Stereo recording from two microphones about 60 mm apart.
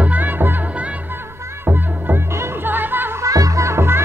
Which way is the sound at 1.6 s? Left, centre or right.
Right.